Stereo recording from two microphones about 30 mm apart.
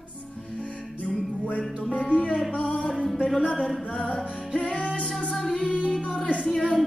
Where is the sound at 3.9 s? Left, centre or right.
Left.